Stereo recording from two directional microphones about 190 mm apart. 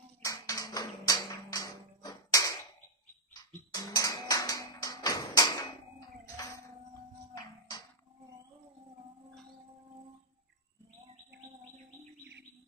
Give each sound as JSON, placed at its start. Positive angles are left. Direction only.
{"t": 0.2, "sound": "tap", "side_deg": 15}
{"t": 3.7, "sound": "tap", "side_deg": 20}